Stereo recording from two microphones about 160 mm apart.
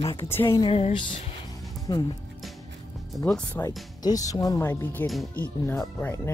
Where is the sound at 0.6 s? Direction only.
35° left (ahead or behind).